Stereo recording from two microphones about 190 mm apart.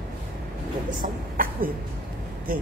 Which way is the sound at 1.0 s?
50° right (ahead or behind).